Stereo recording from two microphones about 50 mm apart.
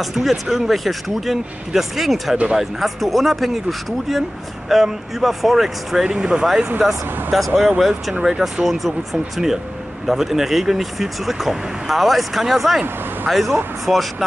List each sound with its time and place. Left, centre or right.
0.0 s speech: centre
4.6 s speech: centre
6.1 s speech: centre
6.8 s speech: centre